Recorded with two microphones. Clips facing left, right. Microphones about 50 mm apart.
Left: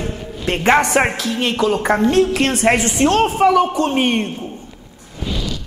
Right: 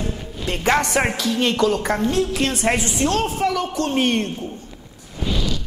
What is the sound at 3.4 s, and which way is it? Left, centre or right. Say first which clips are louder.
A man's voice: left 8 dB; left.